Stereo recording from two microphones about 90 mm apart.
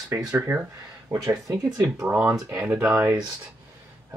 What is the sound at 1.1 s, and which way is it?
Speech, 35° right (ahead or behind).